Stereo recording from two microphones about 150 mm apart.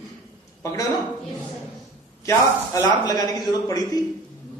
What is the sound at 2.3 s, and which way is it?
A man's voice, 25° left (ahead or behind).